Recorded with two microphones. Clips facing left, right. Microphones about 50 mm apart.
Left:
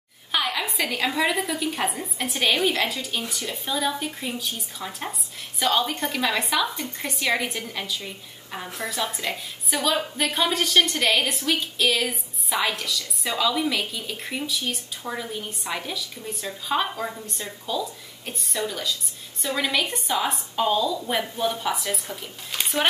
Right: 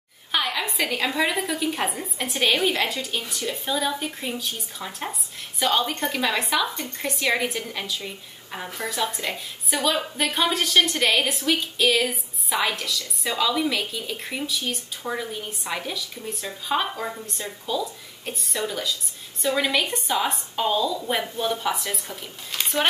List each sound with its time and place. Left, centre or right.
0.3 s a woman's voice: centre